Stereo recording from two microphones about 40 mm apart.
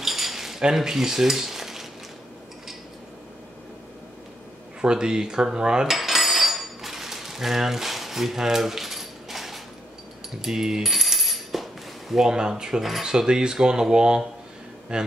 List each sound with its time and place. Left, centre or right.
0.0 s cutlery: centre
4.8 s cutlery: centre
5.9 s cutlery: centre
10.4 s speech: centre
10.9 s coin: centre
12.2 s speech: centre
14.9 s cutlery: right